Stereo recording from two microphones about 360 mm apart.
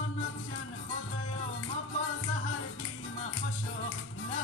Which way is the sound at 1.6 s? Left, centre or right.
Left.